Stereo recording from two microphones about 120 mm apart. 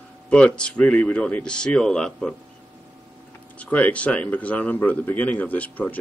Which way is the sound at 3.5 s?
10° left (ahead or behind).